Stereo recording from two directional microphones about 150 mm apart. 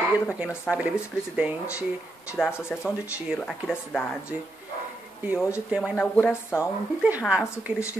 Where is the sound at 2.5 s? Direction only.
15° left (ahead or behind).